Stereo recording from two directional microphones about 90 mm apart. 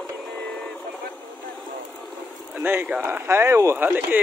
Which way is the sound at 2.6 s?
25° right (ahead or behind).